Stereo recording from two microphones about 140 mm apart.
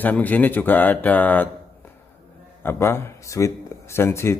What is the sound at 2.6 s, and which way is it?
Speech, 15° left (ahead or behind).